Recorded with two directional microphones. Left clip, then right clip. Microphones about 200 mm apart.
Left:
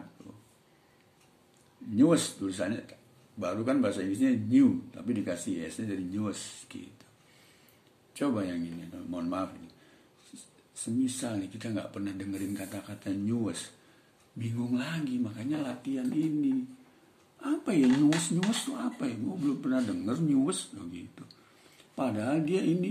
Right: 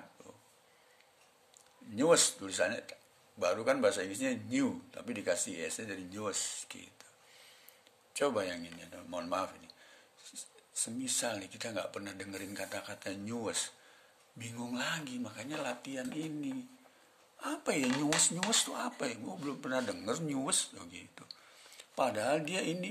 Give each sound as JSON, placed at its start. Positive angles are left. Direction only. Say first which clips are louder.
{"t": 2.0, "sound": "speech", "louder": "left 2 dB", "side_deg": -45}
{"t": 8.1, "sound": "speech", "louder": "left 1 dB", "side_deg": -45}
{"t": 17.4, "sound": "speech", "louder": "left 6 dB", "side_deg": -50}